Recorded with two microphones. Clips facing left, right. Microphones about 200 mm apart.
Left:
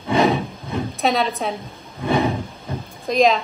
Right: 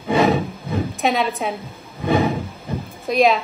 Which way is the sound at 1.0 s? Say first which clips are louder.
Even; centre (ahead or behind).